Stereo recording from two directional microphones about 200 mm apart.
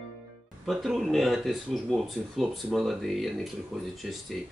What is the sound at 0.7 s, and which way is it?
Speech, centre (ahead or behind).